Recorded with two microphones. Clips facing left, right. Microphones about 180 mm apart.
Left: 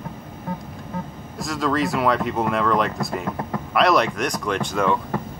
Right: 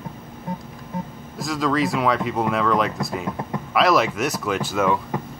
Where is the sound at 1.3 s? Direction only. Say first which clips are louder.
Right 1 dB; centre (ahead or behind).